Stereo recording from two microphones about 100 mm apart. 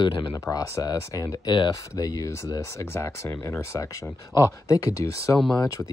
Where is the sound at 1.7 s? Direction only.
35° left (ahead or behind).